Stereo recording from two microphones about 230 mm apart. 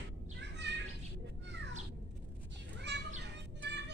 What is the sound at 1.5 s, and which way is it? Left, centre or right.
Cat, right.